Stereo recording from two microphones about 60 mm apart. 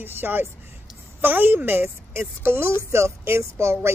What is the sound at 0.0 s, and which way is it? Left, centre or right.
Speech, right.